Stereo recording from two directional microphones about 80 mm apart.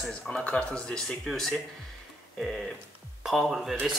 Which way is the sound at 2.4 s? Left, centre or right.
Centre.